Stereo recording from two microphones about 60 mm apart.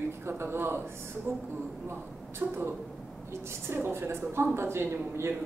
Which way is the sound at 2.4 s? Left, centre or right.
Right.